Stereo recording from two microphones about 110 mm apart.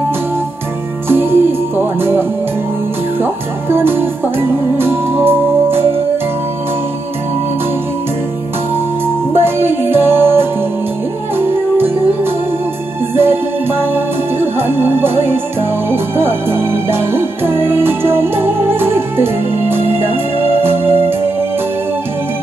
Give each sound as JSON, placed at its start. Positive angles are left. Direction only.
{"t": 1.0, "sound": "music", "side_deg": -20}
{"t": 9.0, "sound": "music", "side_deg": -20}
{"t": 13.1, "sound": "music", "side_deg": -20}